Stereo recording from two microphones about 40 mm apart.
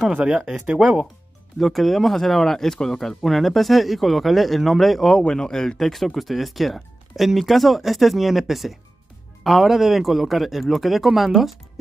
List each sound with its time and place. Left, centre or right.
0.1 s speech: right
0.5 s speech: centre
1.6 s speech: centre
3.3 s speech: centre
5.2 s speech: centre